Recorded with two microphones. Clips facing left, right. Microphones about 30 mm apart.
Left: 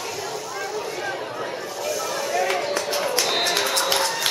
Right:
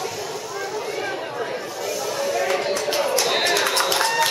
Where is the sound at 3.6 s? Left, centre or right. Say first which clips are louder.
Right 2 dB; centre.